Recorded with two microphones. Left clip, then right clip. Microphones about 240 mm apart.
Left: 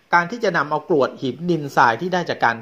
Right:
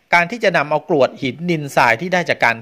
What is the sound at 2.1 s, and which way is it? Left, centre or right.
Speech, right.